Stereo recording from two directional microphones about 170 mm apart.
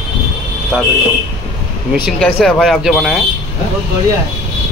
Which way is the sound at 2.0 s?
5° left (ahead or behind).